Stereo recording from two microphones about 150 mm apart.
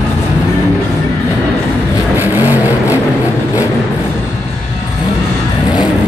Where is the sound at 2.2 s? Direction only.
15° right (ahead or behind).